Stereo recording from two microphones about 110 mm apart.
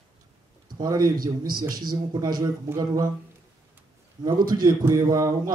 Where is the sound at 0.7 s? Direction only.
35° right (ahead or behind).